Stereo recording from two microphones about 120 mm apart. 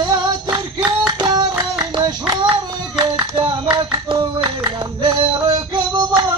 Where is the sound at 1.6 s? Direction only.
40° right (ahead or behind).